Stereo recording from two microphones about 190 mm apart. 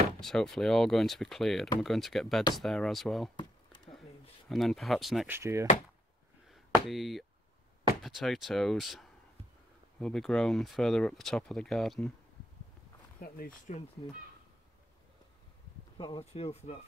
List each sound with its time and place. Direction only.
0.2 s speech: centre (ahead or behind)
3.3 s a sound: 25° left (ahead or behind)
4.5 s speech: centre (ahead or behind)
5.3 s speech: 15° right (ahead or behind)
6.5 s chop: centre (ahead or behind)
8.0 s speech: centre (ahead or behind)
13.2 s speech: 50° left (ahead or behind)
16.0 s speech: 30° left (ahead or behind)